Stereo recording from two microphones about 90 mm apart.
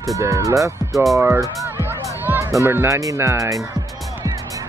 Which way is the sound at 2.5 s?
30° right (ahead or behind).